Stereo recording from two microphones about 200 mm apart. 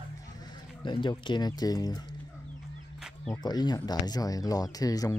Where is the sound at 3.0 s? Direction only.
Centre (ahead or behind).